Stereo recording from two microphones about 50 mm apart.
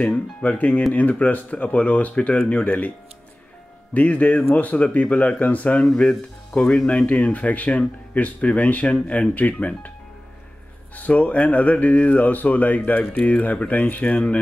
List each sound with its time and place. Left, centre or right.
0.0 s speech: left
3.9 s speech: left
11.0 s speech: left